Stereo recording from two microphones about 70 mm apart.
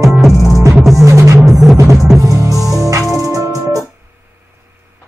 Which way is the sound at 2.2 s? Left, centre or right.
Right.